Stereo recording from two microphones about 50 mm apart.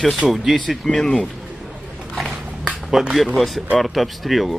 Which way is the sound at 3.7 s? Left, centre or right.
Centre.